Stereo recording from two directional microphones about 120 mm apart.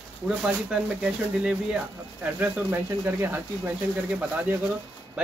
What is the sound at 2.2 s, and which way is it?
Speech, 15° right (ahead or behind).